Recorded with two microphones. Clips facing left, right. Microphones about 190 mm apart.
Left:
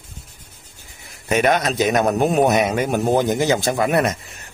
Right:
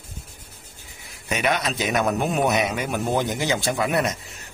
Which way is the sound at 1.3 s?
50° left (ahead or behind).